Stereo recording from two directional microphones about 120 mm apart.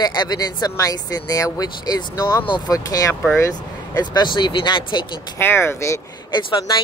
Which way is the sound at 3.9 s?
40° left (ahead or behind).